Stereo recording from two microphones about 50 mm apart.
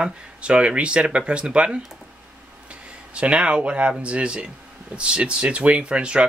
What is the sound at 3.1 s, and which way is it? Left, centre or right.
Speech, right.